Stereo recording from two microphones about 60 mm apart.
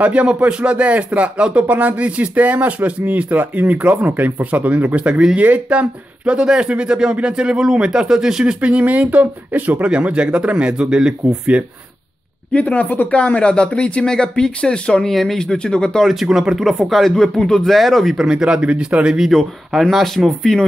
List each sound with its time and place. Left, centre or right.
0.0 s speech: right
8.5 s speech: right
12.5 s speech: left
15.0 s speech: centre
16.1 s speech: centre
19.1 s speech: centre